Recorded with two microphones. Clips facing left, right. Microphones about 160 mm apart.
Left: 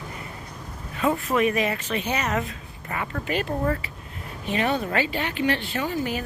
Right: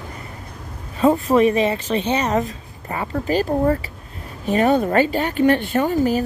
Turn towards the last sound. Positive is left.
turn(degrees=-40)  # may be behind; listen again after turning